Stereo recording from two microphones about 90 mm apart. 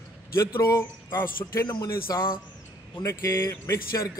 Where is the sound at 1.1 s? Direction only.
25° left (ahead or behind).